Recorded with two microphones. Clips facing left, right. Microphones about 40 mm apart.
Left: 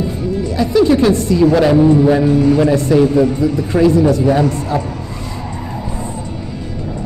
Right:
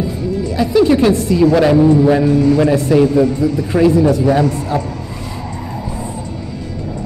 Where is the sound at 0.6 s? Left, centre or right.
Centre.